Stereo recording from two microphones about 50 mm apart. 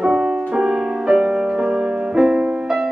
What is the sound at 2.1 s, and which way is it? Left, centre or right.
Music, centre.